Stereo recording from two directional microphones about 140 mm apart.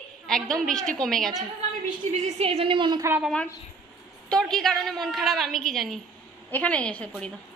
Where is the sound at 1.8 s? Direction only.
60° right (ahead or behind); by 3.0 s 35° right (ahead or behind).